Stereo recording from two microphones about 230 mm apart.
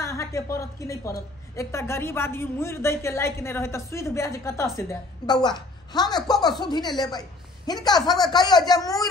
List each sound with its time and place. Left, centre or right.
0.0 s a woman's voice: centre